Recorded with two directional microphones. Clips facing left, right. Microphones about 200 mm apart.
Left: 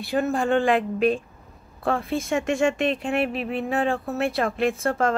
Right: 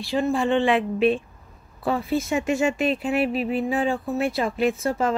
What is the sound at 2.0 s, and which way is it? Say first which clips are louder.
Speech: right 1 dB; centre (ahead or behind).